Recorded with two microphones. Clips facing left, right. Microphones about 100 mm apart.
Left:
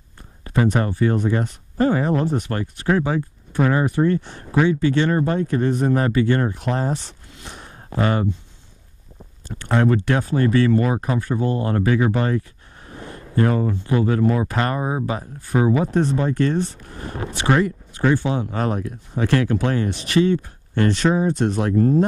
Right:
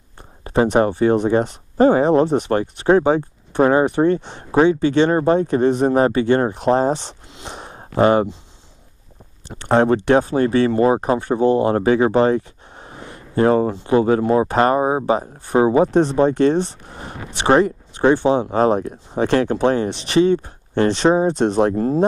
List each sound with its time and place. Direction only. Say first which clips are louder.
0.4 s speech: right 5 dB; 25° right (ahead or behind)
9.7 s speech: right 5 dB; 30° right (ahead or behind)